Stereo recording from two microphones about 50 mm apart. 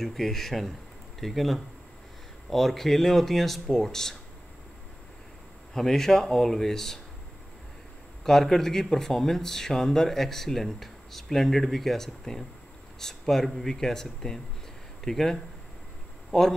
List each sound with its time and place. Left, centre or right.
0.0 s speech: centre
5.7 s speech: centre
8.2 s speech: centre